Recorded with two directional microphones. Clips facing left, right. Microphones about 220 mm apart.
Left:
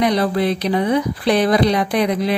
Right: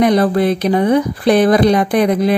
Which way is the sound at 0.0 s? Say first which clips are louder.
Right 5 dB; 50° right (ahead or behind).